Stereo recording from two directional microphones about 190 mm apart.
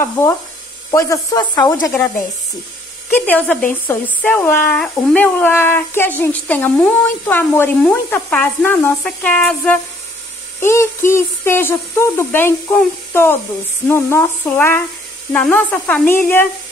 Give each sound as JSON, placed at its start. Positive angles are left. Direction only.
{"t": 0.0, "sound": "speech", "side_deg": 15}